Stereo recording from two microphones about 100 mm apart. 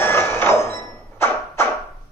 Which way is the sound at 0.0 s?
25° left (ahead or behind).